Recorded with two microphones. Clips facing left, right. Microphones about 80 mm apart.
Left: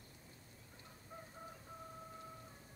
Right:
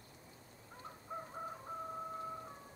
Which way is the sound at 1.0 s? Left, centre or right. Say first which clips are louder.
Right 9 dB; right.